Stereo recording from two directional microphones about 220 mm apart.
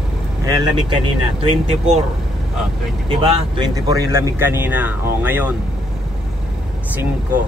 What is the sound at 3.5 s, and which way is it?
Speech, 20° right (ahead or behind).